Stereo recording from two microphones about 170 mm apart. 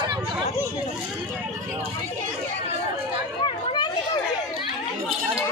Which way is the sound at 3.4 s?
25° left (ahead or behind).